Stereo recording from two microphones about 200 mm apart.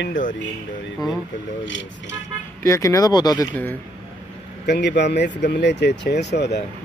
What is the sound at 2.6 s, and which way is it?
Speech, 15° left (ahead or behind).